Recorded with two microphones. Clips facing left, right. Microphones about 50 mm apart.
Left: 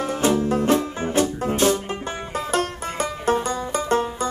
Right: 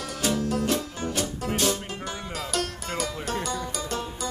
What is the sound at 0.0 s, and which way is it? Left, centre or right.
Music, left.